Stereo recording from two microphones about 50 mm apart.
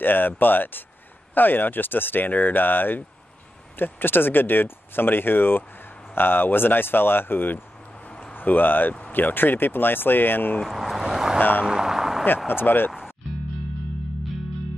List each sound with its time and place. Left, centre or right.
0.0 s speech: left
10.6 s speech: centre
11.3 s speech: left
11.6 s a sound: centre
12.4 s speech: left